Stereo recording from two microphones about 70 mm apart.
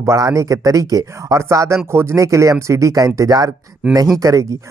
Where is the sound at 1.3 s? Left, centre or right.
Right.